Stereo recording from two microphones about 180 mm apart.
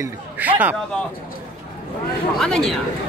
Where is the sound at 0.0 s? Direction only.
10° right (ahead or behind).